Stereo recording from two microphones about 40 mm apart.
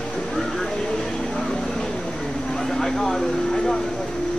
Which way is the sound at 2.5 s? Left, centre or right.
Centre.